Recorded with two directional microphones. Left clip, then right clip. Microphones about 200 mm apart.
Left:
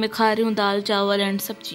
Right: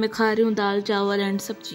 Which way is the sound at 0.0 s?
5° right (ahead or behind).